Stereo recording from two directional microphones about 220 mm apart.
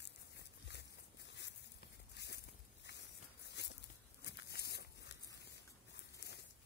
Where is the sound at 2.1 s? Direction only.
50° left (ahead or behind).